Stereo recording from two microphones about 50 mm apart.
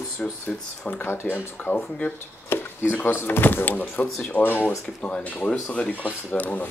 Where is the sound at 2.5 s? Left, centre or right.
Left.